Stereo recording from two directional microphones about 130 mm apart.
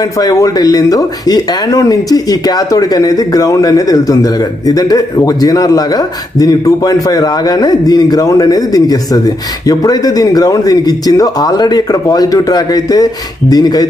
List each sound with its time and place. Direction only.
0.0 s speech: 25° left (ahead or behind)